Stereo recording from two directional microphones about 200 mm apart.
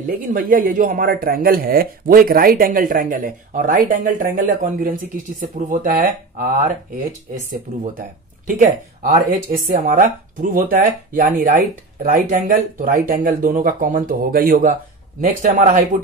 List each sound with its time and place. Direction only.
0.2 s speech: 45° right (ahead or behind)
8.5 s speech: 45° right (ahead or behind)